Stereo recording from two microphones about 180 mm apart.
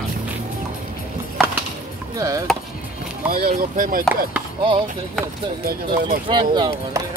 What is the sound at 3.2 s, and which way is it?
Speech, 55° right (ahead or behind).